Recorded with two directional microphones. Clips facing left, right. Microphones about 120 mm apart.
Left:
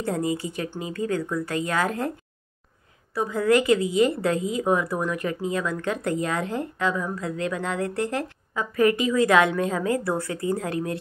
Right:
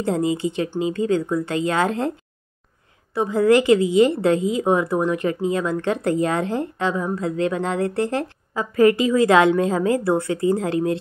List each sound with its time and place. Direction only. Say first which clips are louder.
0.0 s a woman's voice: right 5 dB; 25° right (ahead or behind)
3.2 s a woman's voice: right 5 dB; 25° right (ahead or behind)